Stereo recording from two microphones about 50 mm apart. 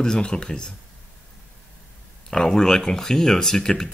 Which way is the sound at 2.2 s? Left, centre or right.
Centre.